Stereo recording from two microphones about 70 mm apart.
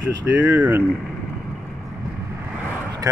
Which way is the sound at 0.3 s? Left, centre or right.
Right.